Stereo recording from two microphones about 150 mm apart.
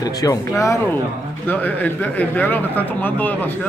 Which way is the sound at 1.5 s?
10° left (ahead or behind).